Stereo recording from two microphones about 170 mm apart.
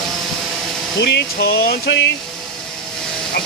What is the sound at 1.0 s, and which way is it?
Speech, 80° left.